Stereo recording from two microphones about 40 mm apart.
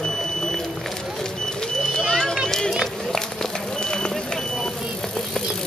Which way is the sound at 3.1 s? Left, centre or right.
Centre.